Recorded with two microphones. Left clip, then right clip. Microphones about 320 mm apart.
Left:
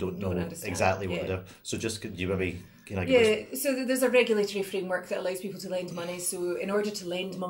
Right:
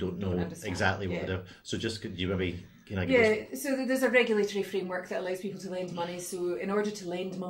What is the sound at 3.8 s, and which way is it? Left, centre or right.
Speech, centre.